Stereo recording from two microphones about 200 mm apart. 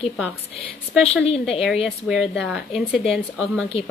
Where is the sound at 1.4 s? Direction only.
Centre (ahead or behind).